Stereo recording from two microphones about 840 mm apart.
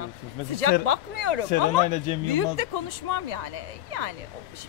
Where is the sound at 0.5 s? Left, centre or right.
Right.